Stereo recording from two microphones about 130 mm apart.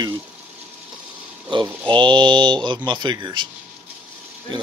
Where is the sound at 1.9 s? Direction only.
40° right (ahead or behind).